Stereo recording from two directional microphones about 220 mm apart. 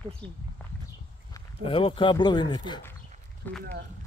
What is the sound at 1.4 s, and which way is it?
Speech, 25° left (ahead or behind).